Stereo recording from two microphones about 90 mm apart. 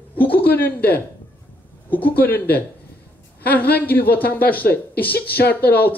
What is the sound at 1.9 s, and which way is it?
Speech, 20° left (ahead or behind).